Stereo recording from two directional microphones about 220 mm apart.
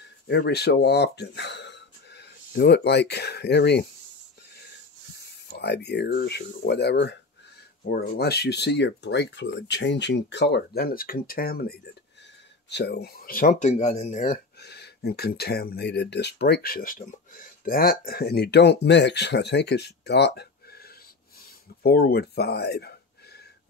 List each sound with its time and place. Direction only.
0.3 s speech: 45° left (ahead or behind)
5.5 s speech: 50° left (ahead or behind); by 14.4 s 35° left (ahead or behind)
14.6 s speech: 50° left (ahead or behind)